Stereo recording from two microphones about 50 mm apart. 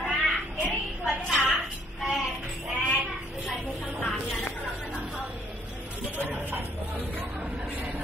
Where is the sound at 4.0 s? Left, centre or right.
Centre.